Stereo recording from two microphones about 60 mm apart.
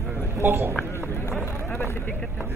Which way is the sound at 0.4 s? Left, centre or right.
Right.